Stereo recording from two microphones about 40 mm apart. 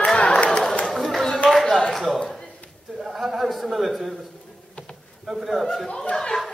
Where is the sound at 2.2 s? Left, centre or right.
Centre.